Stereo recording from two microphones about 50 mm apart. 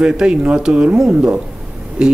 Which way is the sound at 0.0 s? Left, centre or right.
Right.